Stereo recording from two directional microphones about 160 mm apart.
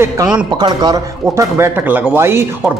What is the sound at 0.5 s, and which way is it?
A man's voice, 25° right (ahead or behind).